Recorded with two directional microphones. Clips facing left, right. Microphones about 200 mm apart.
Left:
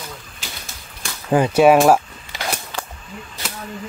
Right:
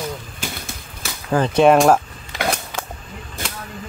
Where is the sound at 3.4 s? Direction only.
50° right (ahead or behind).